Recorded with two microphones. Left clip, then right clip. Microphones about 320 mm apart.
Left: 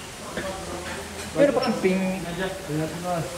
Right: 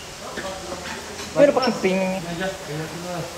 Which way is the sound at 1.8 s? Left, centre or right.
Right.